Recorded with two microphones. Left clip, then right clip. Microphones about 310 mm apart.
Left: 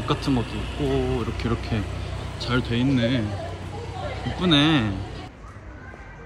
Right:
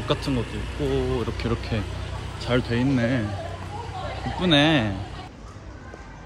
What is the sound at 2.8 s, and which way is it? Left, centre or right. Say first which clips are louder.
Speech: left 1 dB; centre.